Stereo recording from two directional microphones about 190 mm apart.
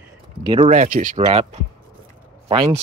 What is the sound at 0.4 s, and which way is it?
Speech, 25° right (ahead or behind).